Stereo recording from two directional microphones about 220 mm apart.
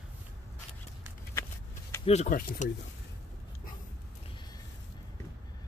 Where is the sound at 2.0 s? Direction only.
30° left (ahead or behind).